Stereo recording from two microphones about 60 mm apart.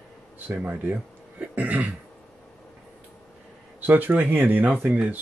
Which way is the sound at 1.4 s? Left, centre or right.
Right.